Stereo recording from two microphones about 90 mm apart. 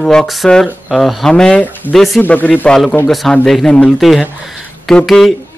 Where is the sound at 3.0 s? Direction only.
Centre (ahead or behind).